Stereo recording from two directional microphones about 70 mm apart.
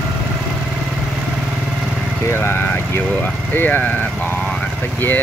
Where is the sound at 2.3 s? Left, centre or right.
Left.